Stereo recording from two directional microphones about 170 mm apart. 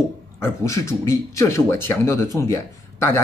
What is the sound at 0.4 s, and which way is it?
Speech, 15° left (ahead or behind).